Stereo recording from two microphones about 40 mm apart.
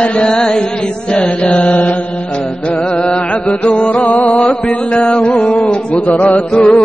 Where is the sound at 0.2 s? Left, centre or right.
Centre.